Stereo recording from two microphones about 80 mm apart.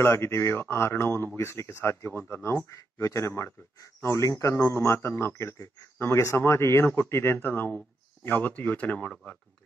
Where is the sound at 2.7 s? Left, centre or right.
Left.